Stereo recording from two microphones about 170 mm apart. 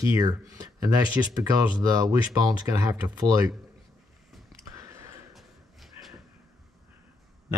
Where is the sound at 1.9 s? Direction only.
20° right (ahead or behind).